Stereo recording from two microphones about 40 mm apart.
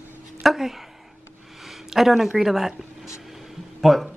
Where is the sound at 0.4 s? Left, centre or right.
Centre.